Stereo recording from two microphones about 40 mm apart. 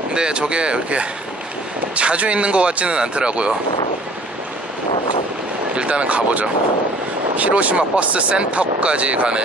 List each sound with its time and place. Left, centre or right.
0.1 s a man's voice: right
5.8 s a man's voice: right